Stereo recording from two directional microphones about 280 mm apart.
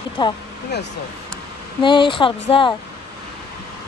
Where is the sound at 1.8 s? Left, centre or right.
Centre.